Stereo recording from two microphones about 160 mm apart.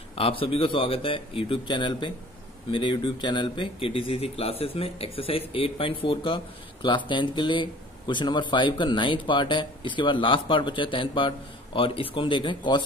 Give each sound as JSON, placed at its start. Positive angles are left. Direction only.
{"t": 0.1, "sound": "speech", "side_deg": 35}